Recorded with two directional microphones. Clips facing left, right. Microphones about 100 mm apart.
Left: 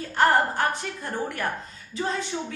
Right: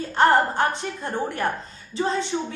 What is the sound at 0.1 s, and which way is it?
A woman's voice, 25° right (ahead or behind).